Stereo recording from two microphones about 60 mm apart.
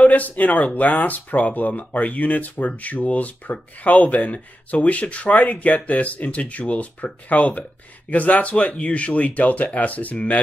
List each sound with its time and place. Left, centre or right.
0.0 s speech: left